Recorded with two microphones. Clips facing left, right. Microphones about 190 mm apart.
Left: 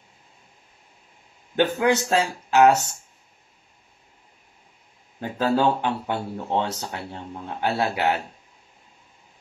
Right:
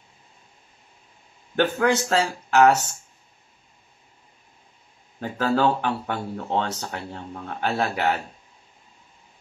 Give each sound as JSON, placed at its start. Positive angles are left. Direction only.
{"t": 1.6, "sound": "speech", "side_deg": 15}
{"t": 5.4, "sound": "speech", "side_deg": 15}